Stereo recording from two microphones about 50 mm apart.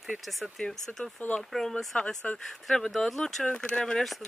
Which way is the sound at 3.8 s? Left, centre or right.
Centre.